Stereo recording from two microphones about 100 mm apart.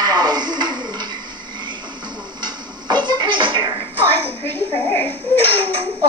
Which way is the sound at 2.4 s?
50° right (ahead or behind).